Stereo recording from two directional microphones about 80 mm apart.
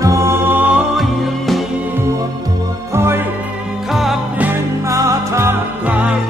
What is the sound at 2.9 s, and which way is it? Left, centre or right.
Music, right.